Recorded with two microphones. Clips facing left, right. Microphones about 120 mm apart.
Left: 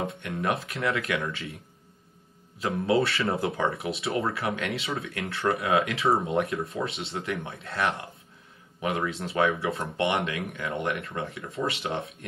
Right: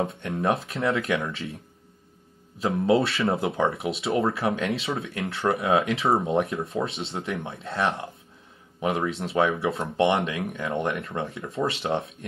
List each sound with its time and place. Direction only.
0.0 s speech: 30° right (ahead or behind)
2.6 s speech: 25° right (ahead or behind)